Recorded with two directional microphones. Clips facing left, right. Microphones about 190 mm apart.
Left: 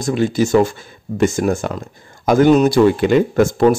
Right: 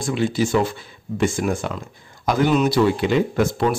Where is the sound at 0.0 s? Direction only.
45° left (ahead or behind).